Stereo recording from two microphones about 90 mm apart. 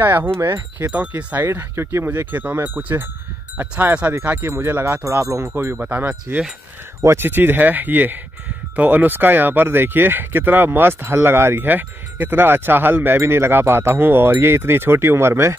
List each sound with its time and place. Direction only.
0.0 s speech: 20° right (ahead or behind)
5.2 s speech: 35° right (ahead or behind)
5.6 s speech: 25° right (ahead or behind)